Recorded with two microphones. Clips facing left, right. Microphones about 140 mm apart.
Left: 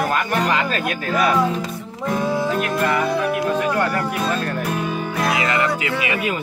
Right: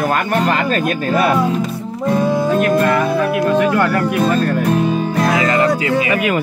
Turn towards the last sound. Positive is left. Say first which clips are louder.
# right 7 dB
turn(degrees=-40)  # may be behind; listen again after turning